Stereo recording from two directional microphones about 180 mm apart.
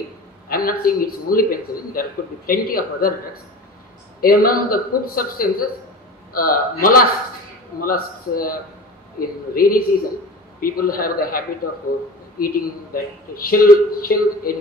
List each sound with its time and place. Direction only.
0.5 s a man's voice: 55° left (ahead or behind)
4.2 s a man's voice: 55° left (ahead or behind)